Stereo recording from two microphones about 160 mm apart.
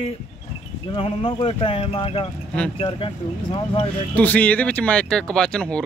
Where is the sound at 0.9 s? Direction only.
35° left (ahead or behind).